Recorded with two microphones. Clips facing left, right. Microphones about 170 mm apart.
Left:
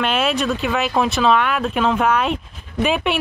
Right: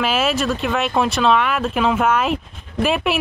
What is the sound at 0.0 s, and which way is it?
Speech, 5° right (ahead or behind).